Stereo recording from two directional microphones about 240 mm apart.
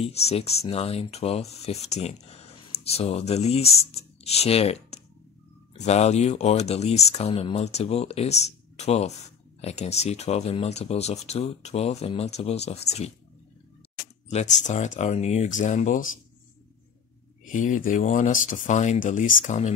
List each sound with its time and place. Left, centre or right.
0.3 s speech: left
14.7 s speech: left
17.5 s speech: left